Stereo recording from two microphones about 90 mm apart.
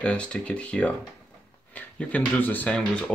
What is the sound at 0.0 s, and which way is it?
Speech, 10° left (ahead or behind).